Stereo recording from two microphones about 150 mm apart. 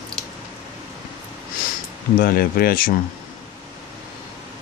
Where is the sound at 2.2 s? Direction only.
90° left; by 2.9 s 75° left (ahead or behind).